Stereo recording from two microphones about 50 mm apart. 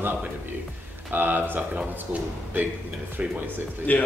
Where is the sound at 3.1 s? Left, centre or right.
Right.